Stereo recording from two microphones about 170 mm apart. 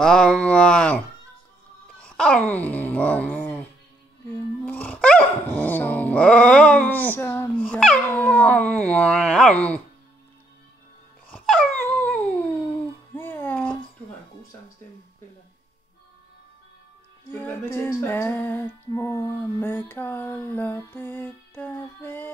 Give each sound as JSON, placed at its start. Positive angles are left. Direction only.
{"t": 0.0, "sound": "a sound", "side_deg": 5}
{"t": 2.0, "sound": "speech", "side_deg": 5}
{"t": 4.6, "sound": "dog", "side_deg": 10}
{"t": 11.3, "sound": "dog", "side_deg": 0}
{"t": 13.1, "sound": "a sound", "side_deg": 10}
{"t": 17.3, "sound": "female singing", "side_deg": 10}